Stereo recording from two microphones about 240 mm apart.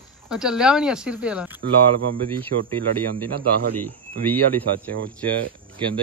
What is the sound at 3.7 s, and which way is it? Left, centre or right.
Speech, centre.